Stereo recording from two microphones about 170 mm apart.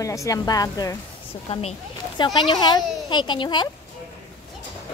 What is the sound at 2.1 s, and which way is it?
Speech, 25° left (ahead or behind).